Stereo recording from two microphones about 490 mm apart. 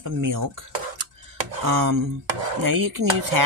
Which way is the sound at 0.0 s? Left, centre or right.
Right.